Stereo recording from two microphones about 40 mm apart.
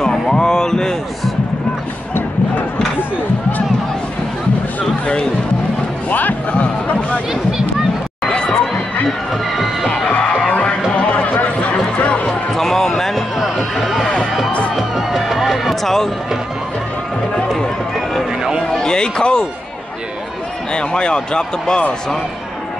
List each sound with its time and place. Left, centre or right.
0.0 s a sound: centre
2.1 s a sound: left
5.0 s music: left
6.0 s music: left
8.3 s a sound: left
10.0 s music: left
12.5 s basketball bounce: centre
13.7 s run: centre
14.8 s music: centre
15.8 s speech: centre
18.7 s music: centre
20.7 s speech: left